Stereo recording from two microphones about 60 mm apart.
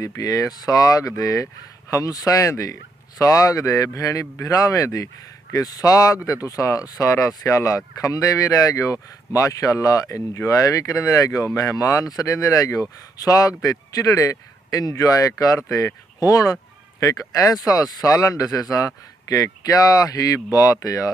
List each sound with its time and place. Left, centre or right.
0.2 s speech: left
10.3 s speech: left
16.3 s speech: left